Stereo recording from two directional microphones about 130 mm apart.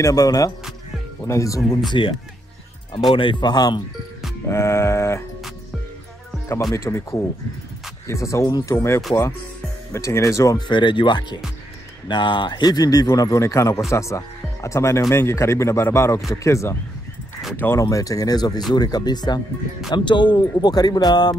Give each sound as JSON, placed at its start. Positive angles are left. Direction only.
{"t": 0.0, "sound": "speech", "side_deg": 25}
{"t": 1.9, "sound": "speech", "side_deg": 40}
{"t": 4.5, "sound": "a sound", "side_deg": 20}
{"t": 6.7, "sound": "speech", "side_deg": 20}
{"t": 17.8, "sound": "speech", "side_deg": 25}